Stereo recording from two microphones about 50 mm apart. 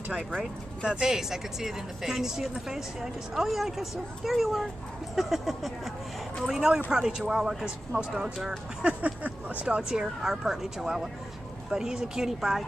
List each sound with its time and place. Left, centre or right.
0.8 s speech: centre
6.4 s speech: centre
8.8 s speech: right
9.8 s speech: centre